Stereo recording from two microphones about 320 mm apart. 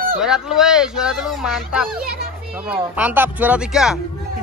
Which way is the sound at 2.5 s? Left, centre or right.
Centre.